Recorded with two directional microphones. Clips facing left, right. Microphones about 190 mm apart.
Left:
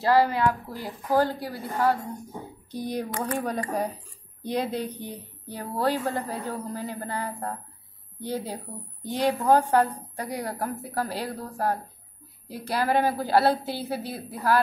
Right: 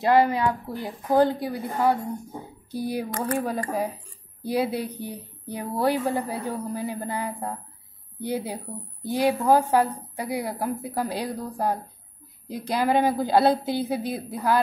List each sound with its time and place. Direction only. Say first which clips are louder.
0.0 s a woman's voice: right 1 dB; 20° right (ahead or behind)